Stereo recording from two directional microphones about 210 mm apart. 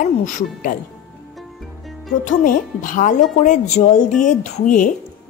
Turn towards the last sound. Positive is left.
turn(degrees=40)  # may be behind; listen again after turning